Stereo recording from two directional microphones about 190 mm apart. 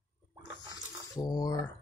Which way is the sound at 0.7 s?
20° left (ahead or behind).